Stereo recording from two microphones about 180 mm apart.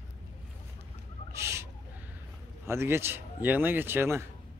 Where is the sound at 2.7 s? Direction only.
15° right (ahead or behind).